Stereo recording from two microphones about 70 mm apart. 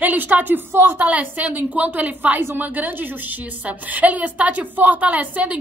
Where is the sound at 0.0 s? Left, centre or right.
Right.